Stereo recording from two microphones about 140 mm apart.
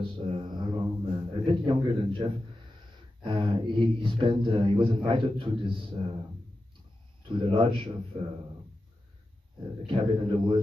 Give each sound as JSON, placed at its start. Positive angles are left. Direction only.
{"t": 0.0, "sound": "mantra", "side_deg": -35}
{"t": 1.3, "sound": "a sound", "side_deg": -40}
{"t": 3.3, "sound": "a man's voice", "side_deg": -35}
{"t": 7.2, "sound": "a man's voice", "side_deg": -35}
{"t": 9.8, "sound": "a man's voice", "side_deg": -35}